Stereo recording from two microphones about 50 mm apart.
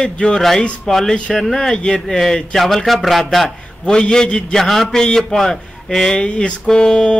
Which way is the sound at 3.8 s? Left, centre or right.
Centre.